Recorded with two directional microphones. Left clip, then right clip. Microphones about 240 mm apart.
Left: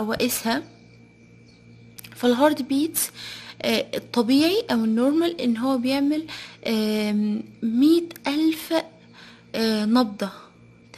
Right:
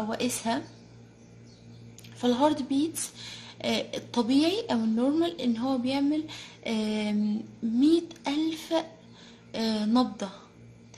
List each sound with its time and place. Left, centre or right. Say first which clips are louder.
0.1 s speech: left 6 dB; left
2.0 s speech: left 6 dB; left